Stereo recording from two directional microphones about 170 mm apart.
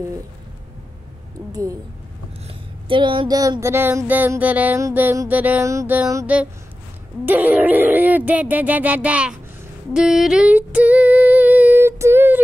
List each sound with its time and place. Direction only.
1.5 s speech: 20° right (ahead or behind)
2.4 s a sound: 30° right (ahead or behind)
3.6 s music: 15° right (ahead or behind)
9.9 s female singing: 5° right (ahead or behind)